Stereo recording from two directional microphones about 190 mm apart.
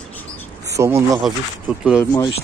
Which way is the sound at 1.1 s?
Centre (ahead or behind).